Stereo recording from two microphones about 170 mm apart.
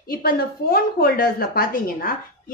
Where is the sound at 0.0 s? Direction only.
60° left (ahead or behind).